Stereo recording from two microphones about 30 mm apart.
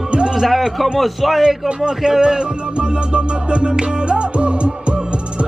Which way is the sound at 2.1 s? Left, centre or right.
Right.